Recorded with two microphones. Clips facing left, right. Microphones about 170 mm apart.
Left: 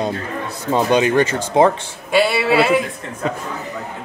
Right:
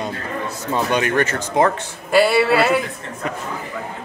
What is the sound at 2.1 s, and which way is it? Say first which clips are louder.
Speech: right 1 dB; centre (ahead or behind).